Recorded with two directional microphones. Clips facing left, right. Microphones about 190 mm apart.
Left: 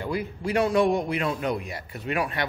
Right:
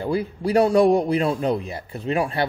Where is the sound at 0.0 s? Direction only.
30° right (ahead or behind).